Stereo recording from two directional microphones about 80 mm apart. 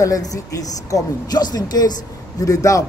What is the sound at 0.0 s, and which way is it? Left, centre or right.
A woman's voice, left.